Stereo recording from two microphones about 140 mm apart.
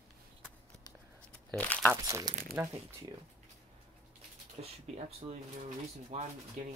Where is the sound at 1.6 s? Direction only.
10° left (ahead or behind).